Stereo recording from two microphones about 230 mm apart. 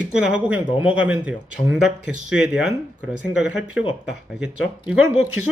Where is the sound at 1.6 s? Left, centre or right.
Left.